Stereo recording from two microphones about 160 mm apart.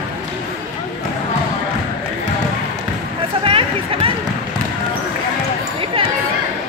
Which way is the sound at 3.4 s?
35° right (ahead or behind).